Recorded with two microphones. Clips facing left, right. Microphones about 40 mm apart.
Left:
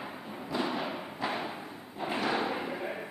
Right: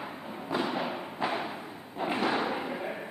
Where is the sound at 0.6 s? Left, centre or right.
Right.